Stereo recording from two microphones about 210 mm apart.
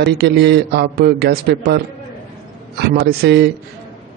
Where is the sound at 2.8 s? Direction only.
50° right (ahead or behind).